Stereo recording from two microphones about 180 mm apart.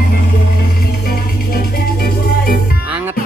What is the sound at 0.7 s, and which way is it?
Music, 55° left (ahead or behind).